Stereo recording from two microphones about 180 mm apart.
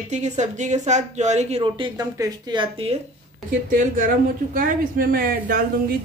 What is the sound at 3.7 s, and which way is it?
Speech, 50° right (ahead or behind).